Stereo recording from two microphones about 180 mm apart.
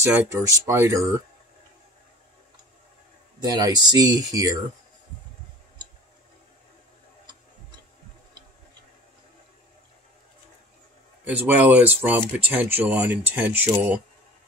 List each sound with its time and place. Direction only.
0.0 s speech: 10° right (ahead or behind)
3.3 s speech: 20° right (ahead or behind)
11.2 s speech: 10° right (ahead or behind)